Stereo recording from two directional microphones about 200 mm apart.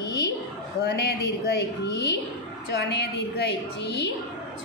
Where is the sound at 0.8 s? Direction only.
50° left (ahead or behind).